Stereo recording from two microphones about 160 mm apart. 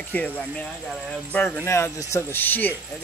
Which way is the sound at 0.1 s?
10° left (ahead or behind).